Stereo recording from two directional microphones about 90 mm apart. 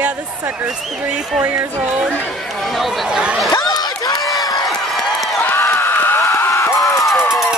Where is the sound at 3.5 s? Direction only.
45° left (ahead or behind).